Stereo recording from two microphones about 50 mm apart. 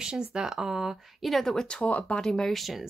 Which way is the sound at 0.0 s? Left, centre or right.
Centre.